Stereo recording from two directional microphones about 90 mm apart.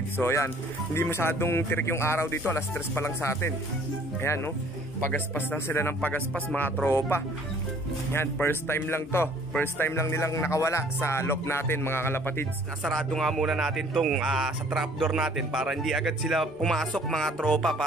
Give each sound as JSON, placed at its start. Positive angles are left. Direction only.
{"t": 0.2, "sound": "a man's voice", "side_deg": 30}
{"t": 5.1, "sound": "a man's voice", "side_deg": 20}
{"t": 6.9, "sound": "a man's voice", "side_deg": 30}
{"t": 12.9, "sound": "speech", "side_deg": 5}